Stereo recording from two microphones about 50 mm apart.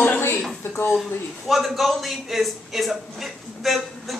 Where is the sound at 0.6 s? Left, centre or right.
Left.